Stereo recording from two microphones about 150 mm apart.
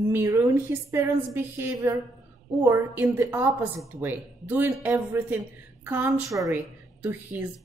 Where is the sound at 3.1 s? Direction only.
15° right (ahead or behind).